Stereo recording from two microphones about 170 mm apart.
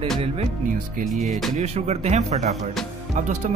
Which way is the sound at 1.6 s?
40° right (ahead or behind).